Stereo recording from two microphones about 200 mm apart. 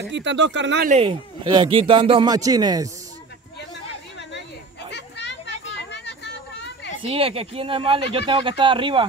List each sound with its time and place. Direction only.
0.1 s speech: 65° right (ahead or behind)
0.8 s speech: 30° right (ahead or behind)
4.9 s a sound: 60° left (ahead or behind)
7.0 s speech: 25° right (ahead or behind)